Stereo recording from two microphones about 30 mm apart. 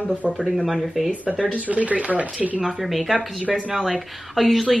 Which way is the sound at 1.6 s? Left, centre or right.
Right.